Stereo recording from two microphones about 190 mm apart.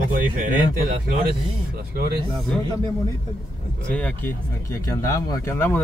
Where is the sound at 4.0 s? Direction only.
5° left (ahead or behind).